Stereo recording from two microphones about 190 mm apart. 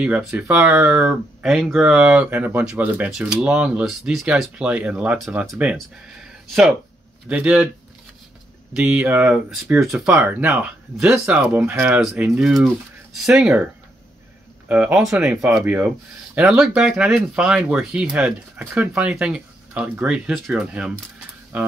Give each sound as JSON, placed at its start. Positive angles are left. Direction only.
{"t": 0.0, "sound": "speech", "side_deg": -5}
{"t": 8.7, "sound": "speech", "side_deg": -5}
{"t": 14.7, "sound": "speech", "side_deg": -5}